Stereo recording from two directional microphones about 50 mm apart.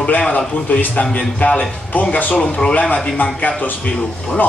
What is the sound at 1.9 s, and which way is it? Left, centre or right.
Speech, left.